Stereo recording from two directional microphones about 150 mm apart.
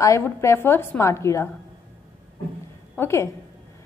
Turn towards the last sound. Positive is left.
turn(degrees=15)  # may be behind; listen again after turning